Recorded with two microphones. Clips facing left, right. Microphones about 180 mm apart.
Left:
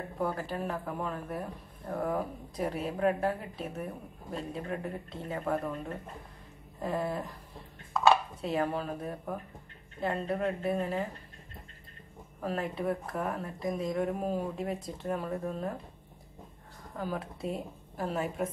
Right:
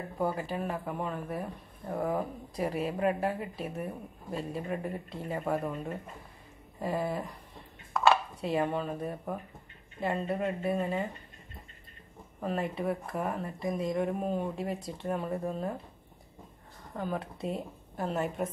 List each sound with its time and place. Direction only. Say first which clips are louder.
0.2 s speech: right 1 dB; 5° right (ahead or behind)
12.4 s speech: right 1 dB; centre (ahead or behind)
16.9 s speech: right 1 dB; 5° left (ahead or behind)